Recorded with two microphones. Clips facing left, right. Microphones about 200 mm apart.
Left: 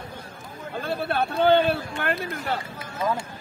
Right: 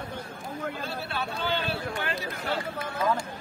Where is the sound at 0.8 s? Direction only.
55° left (ahead or behind).